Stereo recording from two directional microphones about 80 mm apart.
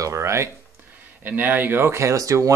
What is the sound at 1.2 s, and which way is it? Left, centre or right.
Speech, right.